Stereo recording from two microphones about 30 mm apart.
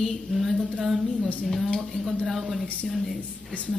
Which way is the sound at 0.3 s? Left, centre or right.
Centre.